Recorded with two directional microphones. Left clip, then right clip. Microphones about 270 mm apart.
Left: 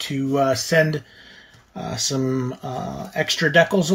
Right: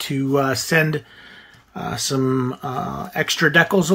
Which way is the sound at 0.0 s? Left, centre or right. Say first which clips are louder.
Right 1 dB; centre.